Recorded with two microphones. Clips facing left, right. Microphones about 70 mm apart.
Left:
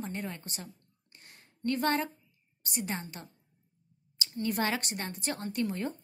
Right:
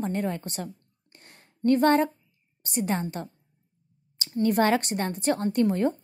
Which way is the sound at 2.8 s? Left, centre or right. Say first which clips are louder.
Right 9 dB; right.